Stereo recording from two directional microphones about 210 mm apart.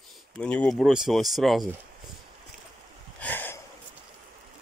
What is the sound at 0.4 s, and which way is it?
Speech, 5° left (ahead or behind).